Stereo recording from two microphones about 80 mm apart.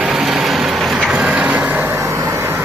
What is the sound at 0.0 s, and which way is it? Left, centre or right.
Vehicle, centre.